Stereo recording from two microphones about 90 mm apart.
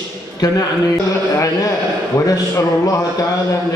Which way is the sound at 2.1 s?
40° left (ahead or behind).